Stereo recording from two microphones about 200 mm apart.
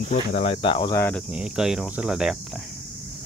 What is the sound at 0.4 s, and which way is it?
Speech, 30° left (ahead or behind).